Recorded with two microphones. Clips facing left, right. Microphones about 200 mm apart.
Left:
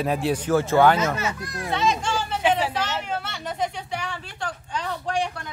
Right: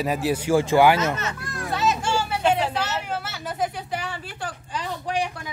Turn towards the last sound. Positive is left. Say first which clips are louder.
# left 1 dB
turn(degrees=-5)  # may be behind; listen again after turning